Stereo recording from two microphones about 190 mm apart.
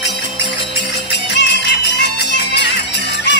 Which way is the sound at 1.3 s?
65° left (ahead or behind).